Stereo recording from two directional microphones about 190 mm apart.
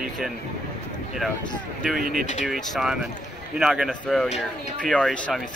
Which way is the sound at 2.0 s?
45° right (ahead or behind).